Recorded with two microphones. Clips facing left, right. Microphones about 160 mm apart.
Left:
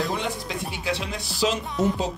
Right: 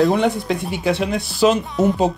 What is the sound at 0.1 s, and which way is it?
Speech, 60° right (ahead or behind).